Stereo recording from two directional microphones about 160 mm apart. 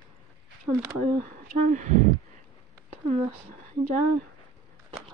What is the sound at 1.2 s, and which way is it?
Speech, 55° right (ahead or behind).